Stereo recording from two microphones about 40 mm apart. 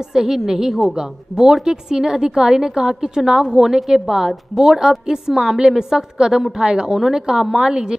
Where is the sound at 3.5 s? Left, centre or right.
Centre.